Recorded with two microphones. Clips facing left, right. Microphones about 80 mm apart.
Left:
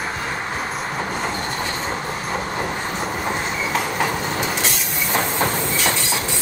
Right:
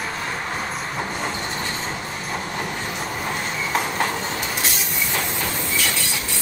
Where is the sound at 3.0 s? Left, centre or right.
Centre.